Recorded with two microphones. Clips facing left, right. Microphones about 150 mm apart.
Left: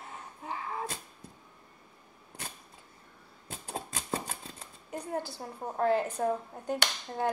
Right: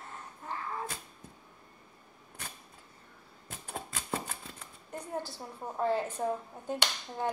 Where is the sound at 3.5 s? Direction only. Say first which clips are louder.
Left 2 dB; 35° left (ahead or behind).